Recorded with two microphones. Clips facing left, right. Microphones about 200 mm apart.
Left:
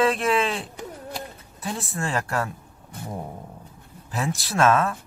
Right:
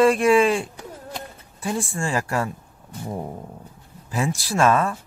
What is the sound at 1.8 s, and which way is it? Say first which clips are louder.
Speech: right 2 dB; 10° right (ahead or behind).